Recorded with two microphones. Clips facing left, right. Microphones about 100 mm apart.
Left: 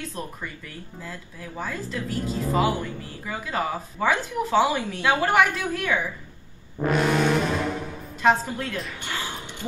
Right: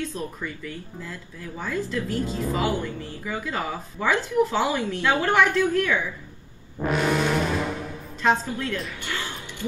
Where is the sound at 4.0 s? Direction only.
Centre (ahead or behind).